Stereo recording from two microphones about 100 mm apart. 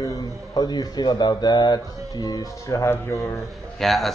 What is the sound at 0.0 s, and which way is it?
A man's voice, 40° left (ahead or behind).